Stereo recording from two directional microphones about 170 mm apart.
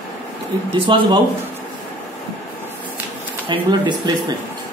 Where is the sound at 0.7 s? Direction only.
30° right (ahead or behind).